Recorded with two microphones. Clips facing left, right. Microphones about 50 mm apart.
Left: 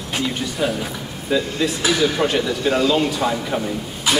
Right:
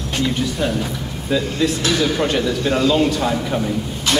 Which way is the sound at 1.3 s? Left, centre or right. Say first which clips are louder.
Right 1 dB; centre.